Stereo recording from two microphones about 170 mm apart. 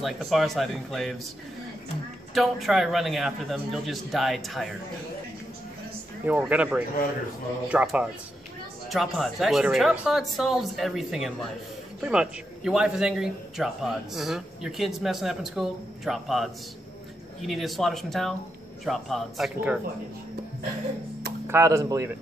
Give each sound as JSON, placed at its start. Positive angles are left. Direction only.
{"t": 0.0, "sound": "a man's voice", "side_deg": 0}
{"t": 2.3, "sound": "a man's voice", "side_deg": 0}
{"t": 6.2, "sound": "a man's voice", "side_deg": -10}
{"t": 21.5, "sound": "speech", "side_deg": -20}